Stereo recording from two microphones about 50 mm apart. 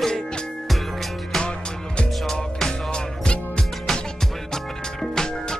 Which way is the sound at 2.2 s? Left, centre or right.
Centre.